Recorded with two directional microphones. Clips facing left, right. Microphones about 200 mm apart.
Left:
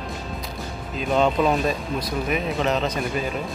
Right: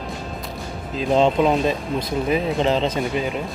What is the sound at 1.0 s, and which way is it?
Speech, 30° right (ahead or behind).